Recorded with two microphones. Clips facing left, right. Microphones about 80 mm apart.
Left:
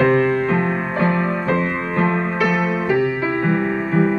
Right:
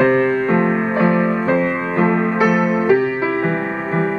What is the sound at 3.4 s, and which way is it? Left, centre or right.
Music, centre.